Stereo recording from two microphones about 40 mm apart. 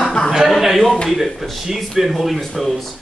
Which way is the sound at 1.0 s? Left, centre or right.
Centre.